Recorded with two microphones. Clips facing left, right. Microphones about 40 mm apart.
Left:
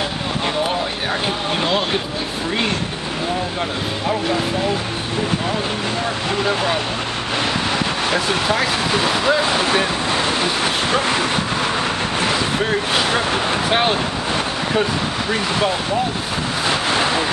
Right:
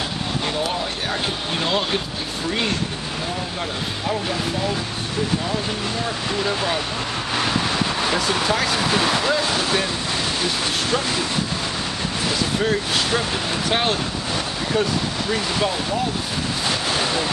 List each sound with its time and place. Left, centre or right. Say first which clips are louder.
1.6 s speech: left 1 dB; centre
6.4 s speech: left 3 dB; centre
8.0 s speech: left 2 dB; centre; by 11.2 s left
12.6 s speech: left 3 dB; left
16.6 s a sound: left 5 dB; left